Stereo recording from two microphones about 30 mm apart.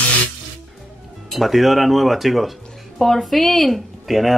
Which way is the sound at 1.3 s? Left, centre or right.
Centre.